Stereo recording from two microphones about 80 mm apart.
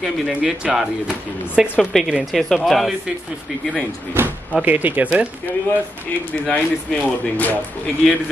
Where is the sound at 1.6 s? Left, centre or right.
Left.